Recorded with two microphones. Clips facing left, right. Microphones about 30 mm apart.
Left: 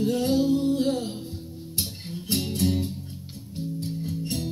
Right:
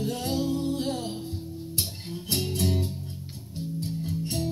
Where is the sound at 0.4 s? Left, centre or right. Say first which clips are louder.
Left 3 dB; centre.